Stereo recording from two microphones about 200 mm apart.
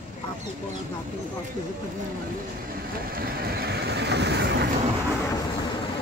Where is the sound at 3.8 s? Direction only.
55° right (ahead or behind).